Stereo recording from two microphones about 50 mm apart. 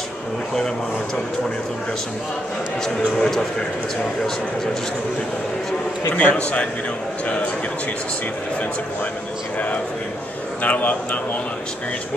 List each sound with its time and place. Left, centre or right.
3.2 s speech: centre
6.1 s a man's voice: left
10.6 s a man's voice: left